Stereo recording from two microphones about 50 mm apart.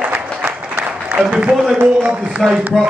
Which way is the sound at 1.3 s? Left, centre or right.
Right.